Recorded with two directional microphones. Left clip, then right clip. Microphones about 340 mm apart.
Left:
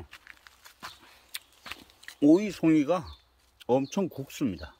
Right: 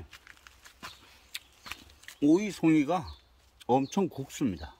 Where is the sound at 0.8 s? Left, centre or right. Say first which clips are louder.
Left 2 dB; centre.